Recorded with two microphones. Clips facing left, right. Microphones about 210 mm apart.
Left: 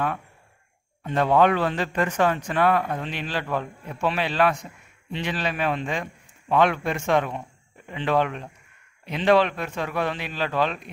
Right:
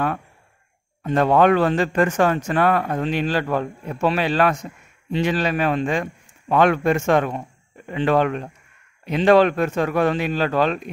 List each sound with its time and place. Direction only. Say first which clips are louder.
1.0 s a man's voice: right 3 dB; 45° right (ahead or behind)